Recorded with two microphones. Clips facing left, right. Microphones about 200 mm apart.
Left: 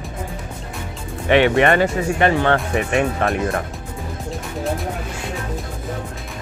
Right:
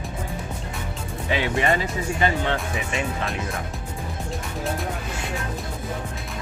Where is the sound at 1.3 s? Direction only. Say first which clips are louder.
Left 8 dB; 70° left (ahead or behind).